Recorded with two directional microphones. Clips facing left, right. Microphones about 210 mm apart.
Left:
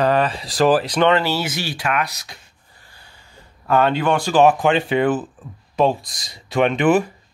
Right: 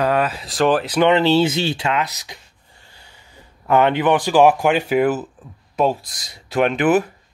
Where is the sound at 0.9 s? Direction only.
15° right (ahead or behind).